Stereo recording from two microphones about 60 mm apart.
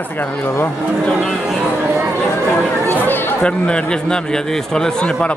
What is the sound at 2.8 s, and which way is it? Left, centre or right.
Chatter, left.